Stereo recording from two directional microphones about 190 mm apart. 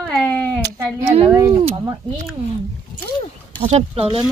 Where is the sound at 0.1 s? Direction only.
5° left (ahead or behind).